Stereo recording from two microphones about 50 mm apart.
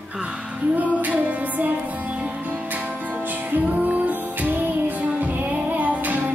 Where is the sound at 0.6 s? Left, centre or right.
Right.